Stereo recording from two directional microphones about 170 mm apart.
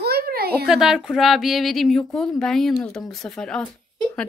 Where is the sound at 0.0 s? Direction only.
65° right (ahead or behind).